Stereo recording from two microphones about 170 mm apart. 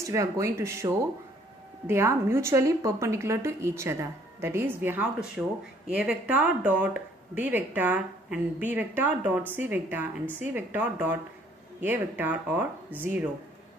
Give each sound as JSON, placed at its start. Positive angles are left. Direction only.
{"t": 0.0, "sound": "speech", "side_deg": -20}